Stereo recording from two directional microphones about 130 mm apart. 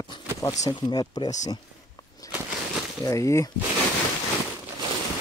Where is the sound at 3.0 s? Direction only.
25° left (ahead or behind).